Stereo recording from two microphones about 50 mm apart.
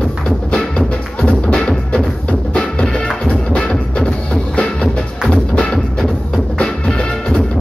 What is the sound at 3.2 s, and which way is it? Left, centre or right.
Music, left.